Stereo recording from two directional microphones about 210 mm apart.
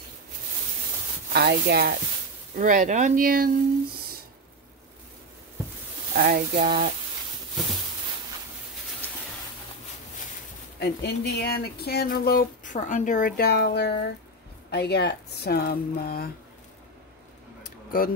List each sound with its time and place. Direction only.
1.3 s speech: 50° right (ahead or behind)
2.5 s speech: 40° right (ahead or behind)
6.2 s speech: 45° right (ahead or behind)
10.8 s speech: 50° left (ahead or behind)